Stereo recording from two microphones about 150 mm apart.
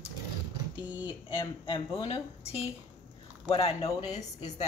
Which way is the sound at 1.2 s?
35° left (ahead or behind).